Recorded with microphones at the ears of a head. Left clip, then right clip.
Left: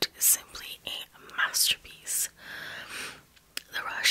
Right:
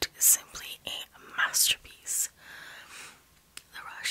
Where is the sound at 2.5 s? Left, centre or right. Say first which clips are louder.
Left 7 dB; left.